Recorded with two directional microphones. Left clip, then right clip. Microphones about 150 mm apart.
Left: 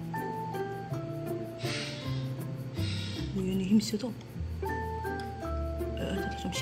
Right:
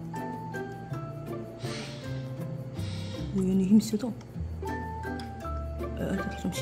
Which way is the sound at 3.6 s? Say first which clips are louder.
Right 3 dB; 90° right.